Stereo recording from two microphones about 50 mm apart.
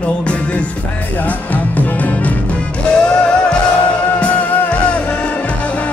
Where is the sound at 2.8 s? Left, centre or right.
Centre.